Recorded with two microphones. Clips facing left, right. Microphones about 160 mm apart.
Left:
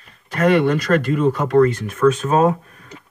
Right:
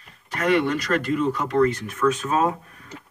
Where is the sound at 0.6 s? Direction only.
45° left (ahead or behind).